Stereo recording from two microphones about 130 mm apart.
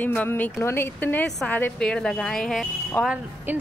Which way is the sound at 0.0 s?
15° left (ahead or behind).